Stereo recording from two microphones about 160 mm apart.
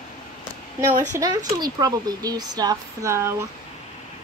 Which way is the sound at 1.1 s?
25° right (ahead or behind).